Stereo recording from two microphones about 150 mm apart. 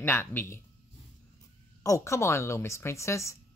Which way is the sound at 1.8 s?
20° left (ahead or behind).